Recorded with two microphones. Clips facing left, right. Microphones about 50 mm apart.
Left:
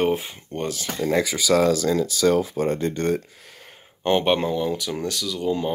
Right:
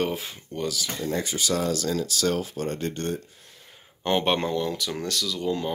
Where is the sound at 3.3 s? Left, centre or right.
Left.